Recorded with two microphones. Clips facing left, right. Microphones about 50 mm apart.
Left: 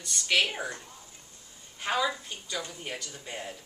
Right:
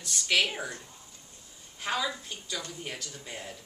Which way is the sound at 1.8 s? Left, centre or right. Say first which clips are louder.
Left 3 dB; centre.